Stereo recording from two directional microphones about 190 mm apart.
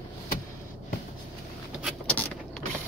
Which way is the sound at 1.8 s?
5° left (ahead or behind).